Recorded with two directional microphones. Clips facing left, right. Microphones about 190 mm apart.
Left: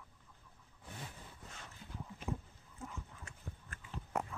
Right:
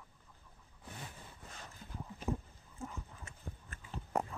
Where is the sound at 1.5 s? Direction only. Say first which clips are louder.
Right 2 dB; 40° right (ahead or behind).